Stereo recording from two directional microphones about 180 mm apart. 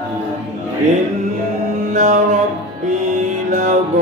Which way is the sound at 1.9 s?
40° right (ahead or behind).